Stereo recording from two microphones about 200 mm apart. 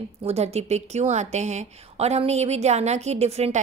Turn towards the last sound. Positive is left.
turn(degrees=-30)  # may be behind; listen again after turning